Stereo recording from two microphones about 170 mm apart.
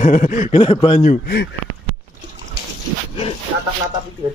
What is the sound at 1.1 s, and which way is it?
Speech, 65° left (ahead or behind).